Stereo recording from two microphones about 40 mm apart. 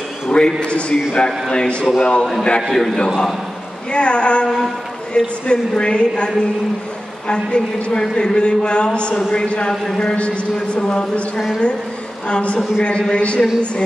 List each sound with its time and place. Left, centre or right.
0.3 s a man's voice: left
2.7 s a man's voice: centre
3.9 s a man's voice: left
10.1 s a man's voice: left
11.3 s a woman's voice: centre
12.3 s a man's voice: left